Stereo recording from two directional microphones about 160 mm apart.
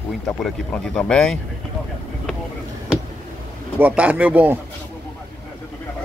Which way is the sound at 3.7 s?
10° right (ahead or behind).